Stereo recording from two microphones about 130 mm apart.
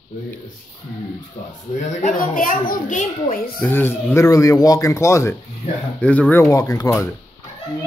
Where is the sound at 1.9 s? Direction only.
75° left (ahead or behind).